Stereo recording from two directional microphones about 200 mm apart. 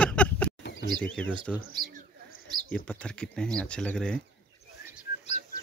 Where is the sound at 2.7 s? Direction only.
5° left (ahead or behind).